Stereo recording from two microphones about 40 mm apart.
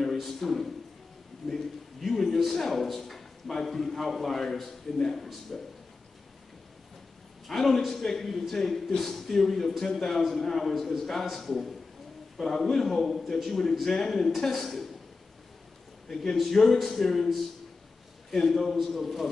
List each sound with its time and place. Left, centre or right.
0.1 s a man's voice: centre
7.4 s a man's voice: centre
16.1 s speech: centre